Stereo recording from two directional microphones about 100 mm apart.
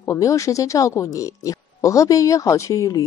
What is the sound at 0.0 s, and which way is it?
Speech, 30° left (ahead or behind).